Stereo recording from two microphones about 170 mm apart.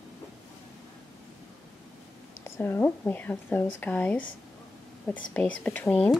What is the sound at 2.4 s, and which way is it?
Speech, 15° left (ahead or behind).